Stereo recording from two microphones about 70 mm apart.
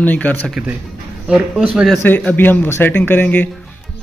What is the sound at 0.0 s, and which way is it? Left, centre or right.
Speech, left.